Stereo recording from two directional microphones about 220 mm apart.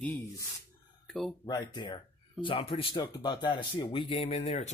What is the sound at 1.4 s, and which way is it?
Speech, 20° left (ahead or behind).